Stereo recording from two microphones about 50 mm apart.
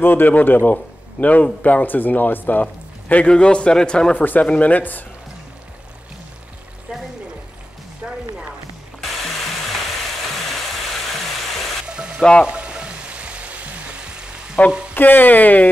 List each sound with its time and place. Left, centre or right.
0.0 s speech: left
3.3 s a man's voice: centre
4.1 s speech: left
6.9 s music: right
11.9 s frying: centre
14.6 s speech: left
15.0 s speech: left